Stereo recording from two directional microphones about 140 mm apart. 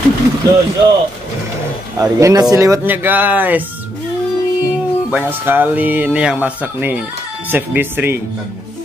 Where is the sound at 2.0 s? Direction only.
20° right (ahead or behind).